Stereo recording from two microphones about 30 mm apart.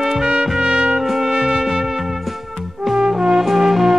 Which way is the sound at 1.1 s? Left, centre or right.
Centre.